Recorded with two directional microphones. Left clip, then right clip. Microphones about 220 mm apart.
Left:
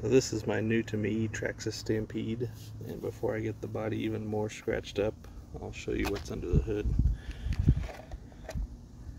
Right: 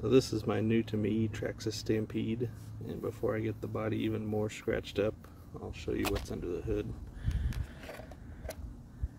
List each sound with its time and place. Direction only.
0.0 s speech: centre (ahead or behind)